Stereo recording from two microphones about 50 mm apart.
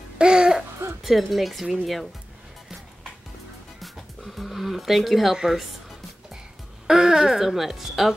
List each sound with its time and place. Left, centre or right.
0.2 s music: centre
1.0 s speech: centre
3.8 s a sound: centre
6.9 s speech: centre